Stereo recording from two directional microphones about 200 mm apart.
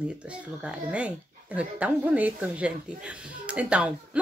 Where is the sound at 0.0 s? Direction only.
5° right (ahead or behind).